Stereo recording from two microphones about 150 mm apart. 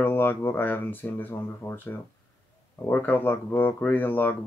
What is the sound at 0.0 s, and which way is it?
Speech, 15° left (ahead or behind).